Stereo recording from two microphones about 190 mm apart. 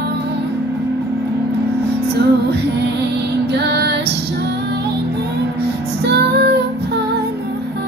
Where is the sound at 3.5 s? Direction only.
60° right (ahead or behind).